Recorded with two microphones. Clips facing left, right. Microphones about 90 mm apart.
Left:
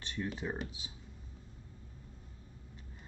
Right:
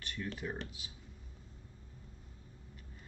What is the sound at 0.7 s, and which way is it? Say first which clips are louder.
Speech: left 2 dB; 25° left (ahead or behind).